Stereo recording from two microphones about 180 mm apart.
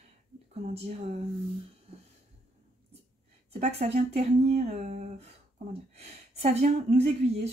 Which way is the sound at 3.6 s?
35° right (ahead or behind).